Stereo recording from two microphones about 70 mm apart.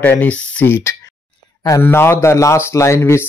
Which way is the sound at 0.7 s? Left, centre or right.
Left.